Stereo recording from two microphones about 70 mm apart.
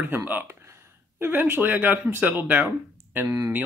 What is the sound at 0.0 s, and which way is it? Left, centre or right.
Speech, right.